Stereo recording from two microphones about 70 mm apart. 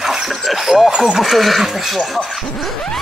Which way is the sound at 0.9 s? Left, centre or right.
Centre.